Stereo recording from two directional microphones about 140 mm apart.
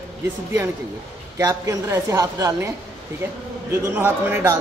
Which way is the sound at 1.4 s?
25° right (ahead or behind).